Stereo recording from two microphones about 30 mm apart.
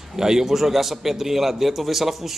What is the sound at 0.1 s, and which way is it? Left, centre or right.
A man's voice, centre.